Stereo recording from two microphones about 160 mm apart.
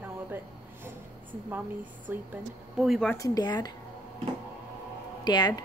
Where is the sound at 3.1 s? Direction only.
25° left (ahead or behind).